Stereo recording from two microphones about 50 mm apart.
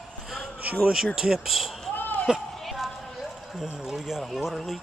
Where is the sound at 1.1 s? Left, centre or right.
Centre.